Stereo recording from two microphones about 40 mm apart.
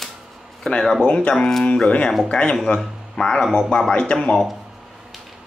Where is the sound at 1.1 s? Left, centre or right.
Left.